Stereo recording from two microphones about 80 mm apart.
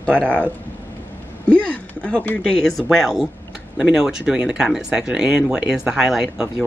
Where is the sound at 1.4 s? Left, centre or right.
Centre.